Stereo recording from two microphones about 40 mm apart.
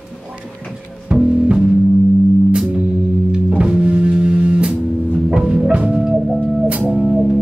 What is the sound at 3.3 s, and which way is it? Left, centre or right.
Music, right.